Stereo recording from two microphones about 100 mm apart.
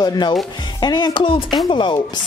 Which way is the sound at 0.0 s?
45° left (ahead or behind).